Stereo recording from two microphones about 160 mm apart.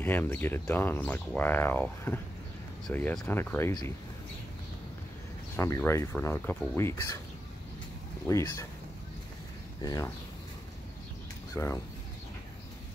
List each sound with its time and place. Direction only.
0.0 s speech: 10° left (ahead or behind)
5.6 s speech: 15° left (ahead or behind)
8.3 s speech: 20° left (ahead or behind)
9.8 s speech: 25° left (ahead or behind)
11.5 s speech: 20° left (ahead or behind)